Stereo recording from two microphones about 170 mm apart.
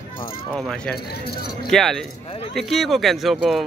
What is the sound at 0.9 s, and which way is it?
Speech, 65° left (ahead or behind).